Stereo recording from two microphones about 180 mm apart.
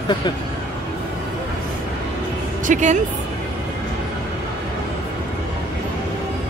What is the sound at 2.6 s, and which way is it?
Speech, 45° right (ahead or behind).